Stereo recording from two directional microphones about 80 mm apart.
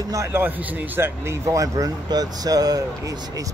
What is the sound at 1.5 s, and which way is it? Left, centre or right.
Speech, right.